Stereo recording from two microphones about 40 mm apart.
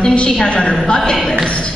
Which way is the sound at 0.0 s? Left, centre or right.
Left.